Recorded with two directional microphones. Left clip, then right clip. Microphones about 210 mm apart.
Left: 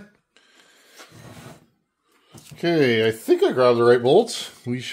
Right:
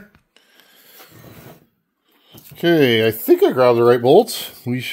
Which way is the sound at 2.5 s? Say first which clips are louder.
Right 5 dB; 45° right (ahead or behind).